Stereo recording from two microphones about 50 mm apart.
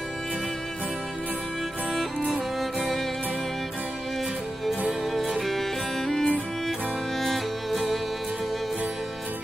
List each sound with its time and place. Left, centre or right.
4.6 s music: centre